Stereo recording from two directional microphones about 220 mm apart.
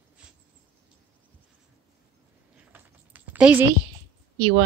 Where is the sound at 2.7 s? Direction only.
5° right (ahead or behind).